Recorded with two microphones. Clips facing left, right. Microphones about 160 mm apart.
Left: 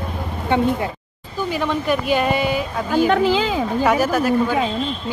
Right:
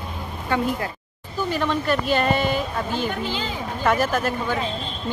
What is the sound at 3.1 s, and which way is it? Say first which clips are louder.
Speech: left 10 dB; 90° left.